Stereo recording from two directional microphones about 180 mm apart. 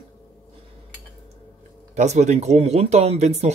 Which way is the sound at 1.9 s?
40° right (ahead or behind).